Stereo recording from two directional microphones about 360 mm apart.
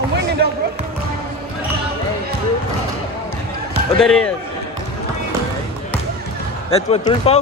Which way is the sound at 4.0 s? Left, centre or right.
Centre.